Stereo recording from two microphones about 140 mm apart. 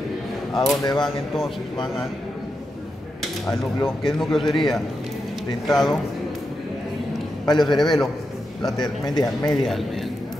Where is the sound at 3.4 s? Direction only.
Centre (ahead or behind).